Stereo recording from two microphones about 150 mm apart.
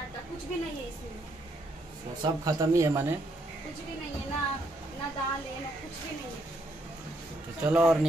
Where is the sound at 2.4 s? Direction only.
20° right (ahead or behind).